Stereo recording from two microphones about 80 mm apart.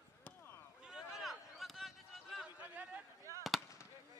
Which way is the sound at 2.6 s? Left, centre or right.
Centre.